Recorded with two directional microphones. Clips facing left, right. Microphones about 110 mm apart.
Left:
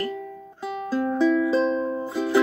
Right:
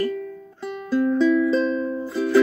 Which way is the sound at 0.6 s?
20° left (ahead or behind).